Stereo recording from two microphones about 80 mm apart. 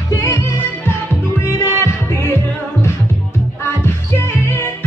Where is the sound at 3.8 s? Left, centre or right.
Left.